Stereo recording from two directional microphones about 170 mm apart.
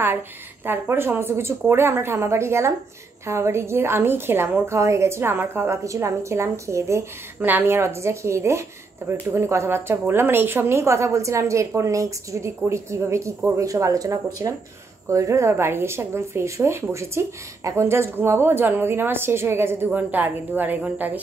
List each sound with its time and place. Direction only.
0.7 s speech: 15° right (ahead or behind)